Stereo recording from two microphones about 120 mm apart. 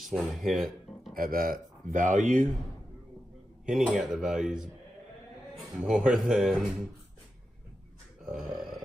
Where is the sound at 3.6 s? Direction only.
5° right (ahead or behind).